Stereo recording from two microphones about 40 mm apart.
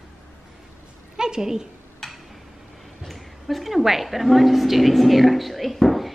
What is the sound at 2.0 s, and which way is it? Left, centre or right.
Tick-tock, centre.